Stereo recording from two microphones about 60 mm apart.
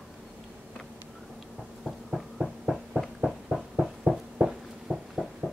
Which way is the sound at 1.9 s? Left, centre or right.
Centre.